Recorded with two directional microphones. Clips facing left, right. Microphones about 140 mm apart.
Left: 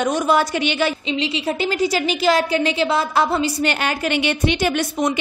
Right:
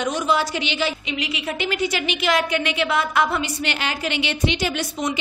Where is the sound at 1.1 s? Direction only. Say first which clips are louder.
Left 5 dB; 30° left (ahead or behind).